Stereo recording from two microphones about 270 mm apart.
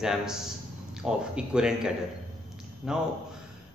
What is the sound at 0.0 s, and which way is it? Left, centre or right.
Speech, centre.